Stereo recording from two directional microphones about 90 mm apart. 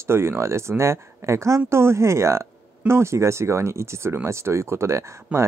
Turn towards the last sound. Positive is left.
turn(degrees=-15)  # may be behind; listen again after turning